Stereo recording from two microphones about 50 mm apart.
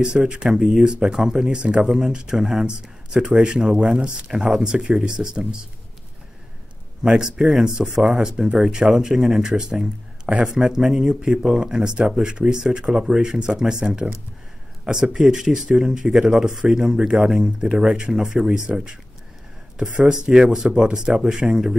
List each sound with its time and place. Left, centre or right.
0.0 s speech: centre
7.0 s speech: centre
11.2 s speech: centre
15.1 s speech: centre
19.8 s speech: centre